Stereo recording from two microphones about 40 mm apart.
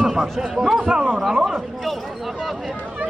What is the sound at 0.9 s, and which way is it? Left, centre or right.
Speech, right.